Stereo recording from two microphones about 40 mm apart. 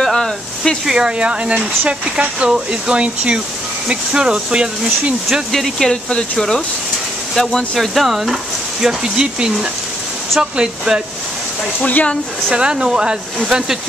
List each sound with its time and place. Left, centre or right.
0.0 s a sound: centre
0.8 s speech: centre
5.5 s speech: centre
8.8 s speech: centre
11.8 s speech: left
12.4 s speech: right